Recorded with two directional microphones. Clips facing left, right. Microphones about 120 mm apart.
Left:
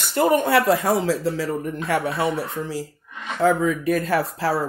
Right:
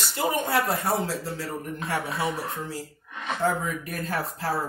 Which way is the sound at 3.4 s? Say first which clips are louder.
Left 8 dB; 90° left.